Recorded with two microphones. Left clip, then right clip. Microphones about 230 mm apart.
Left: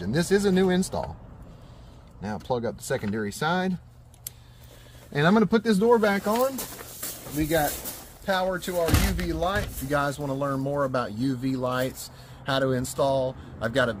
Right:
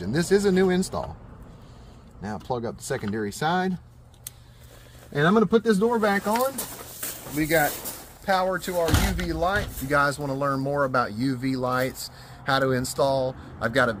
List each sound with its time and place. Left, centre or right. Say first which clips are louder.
0.0 s speech: right 2 dB; centre
2.2 s speech: left 1 dB; centre
5.3 s speech: right 3 dB; left
5.9 s speech: even; centre
7.1 s a sound: right 2 dB; centre
7.8 s speech: right 1 dB; centre